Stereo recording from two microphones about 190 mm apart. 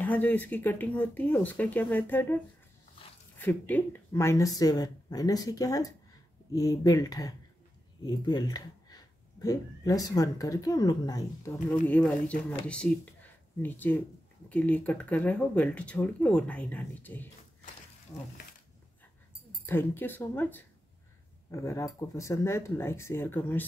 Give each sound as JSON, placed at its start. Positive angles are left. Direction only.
{"t": 0.0, "sound": "speech", "side_deg": 10}
{"t": 19.6, "sound": "speech", "side_deg": 10}